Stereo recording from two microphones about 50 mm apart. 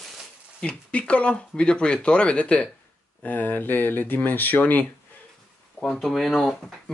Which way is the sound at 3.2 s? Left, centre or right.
Left.